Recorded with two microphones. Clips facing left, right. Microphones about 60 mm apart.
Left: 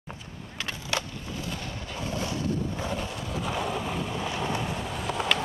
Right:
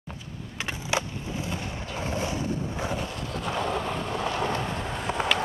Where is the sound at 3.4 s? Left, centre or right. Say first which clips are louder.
Right 3 dB; centre.